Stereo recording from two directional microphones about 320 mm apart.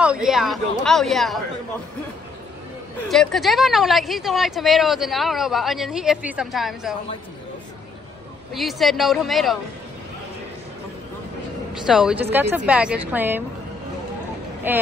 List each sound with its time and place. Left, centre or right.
0.0 s speech: centre
3.1 s speech: centre
8.5 s speech: centre
11.8 s speech: centre
14.7 s speech: centre